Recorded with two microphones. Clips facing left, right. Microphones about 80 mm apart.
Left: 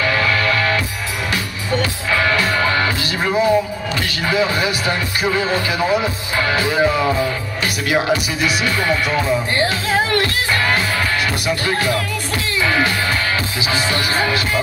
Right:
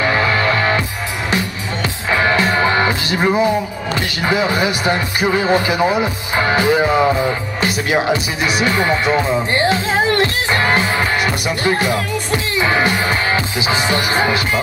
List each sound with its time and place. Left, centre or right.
0.0 s music: right